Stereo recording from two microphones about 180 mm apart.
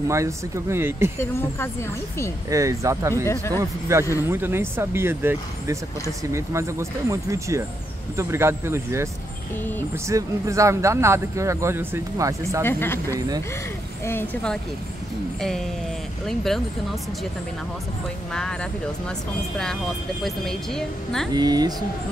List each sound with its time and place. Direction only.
0.1 s speech: 15° right (ahead or behind)
1.2 s speech: 15° left (ahead or behind)
2.5 s speech: 15° right (ahead or behind)
3.3 s speech: 15° left (ahead or behind)
3.9 s speech: 15° right (ahead or behind)
12.6 s a woman's voice: 10° left (ahead or behind)
18.3 s a woman's voice: 5° left (ahead or behind)
20.2 s a woman's voice: centre (ahead or behind)
21.3 s speech: 20° right (ahead or behind)